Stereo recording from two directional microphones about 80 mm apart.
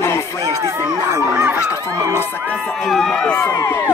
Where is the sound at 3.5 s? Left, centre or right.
Left.